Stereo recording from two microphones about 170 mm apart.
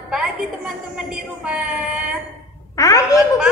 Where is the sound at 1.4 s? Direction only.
5° right (ahead or behind).